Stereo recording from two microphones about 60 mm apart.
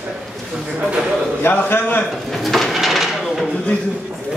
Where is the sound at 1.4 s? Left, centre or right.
Left.